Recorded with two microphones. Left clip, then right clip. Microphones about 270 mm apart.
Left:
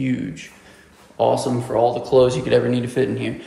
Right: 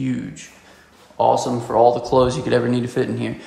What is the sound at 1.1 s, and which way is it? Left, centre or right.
Speech, centre.